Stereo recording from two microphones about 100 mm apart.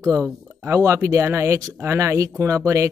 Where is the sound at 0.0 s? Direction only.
30° right (ahead or behind).